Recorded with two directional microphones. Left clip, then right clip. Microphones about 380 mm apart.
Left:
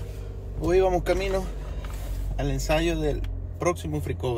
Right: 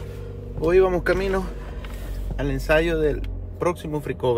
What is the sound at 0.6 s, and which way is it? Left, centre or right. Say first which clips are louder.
Speech: right 4 dB; centre.